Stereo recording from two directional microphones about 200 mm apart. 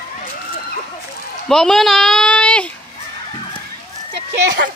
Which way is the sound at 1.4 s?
Centre (ahead or behind).